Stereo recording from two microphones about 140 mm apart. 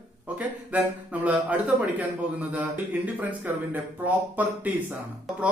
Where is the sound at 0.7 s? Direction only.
10° right (ahead or behind).